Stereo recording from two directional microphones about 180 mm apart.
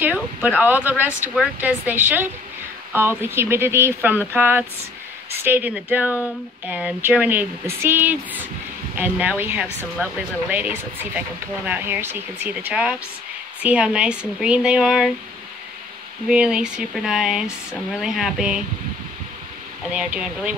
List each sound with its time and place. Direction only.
0.0 s speech: 10° right (ahead or behind)
16.3 s speech: 5° right (ahead or behind)
19.9 s speech: 5° right (ahead or behind)